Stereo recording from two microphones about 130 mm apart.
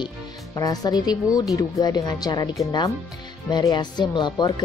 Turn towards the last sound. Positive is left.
turn(degrees=35)  # may be behind; listen again after turning